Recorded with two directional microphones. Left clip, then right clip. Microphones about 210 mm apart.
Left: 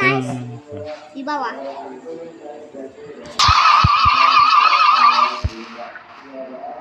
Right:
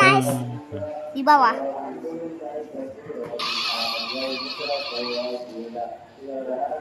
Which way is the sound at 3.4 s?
35° left (ahead or behind).